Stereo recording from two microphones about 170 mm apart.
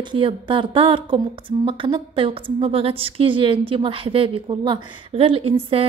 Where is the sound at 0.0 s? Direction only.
30° right (ahead or behind).